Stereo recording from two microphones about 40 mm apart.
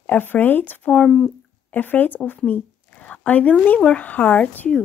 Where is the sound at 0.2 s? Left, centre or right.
Left.